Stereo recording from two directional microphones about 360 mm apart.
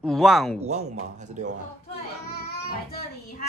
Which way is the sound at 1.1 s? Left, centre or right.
Centre.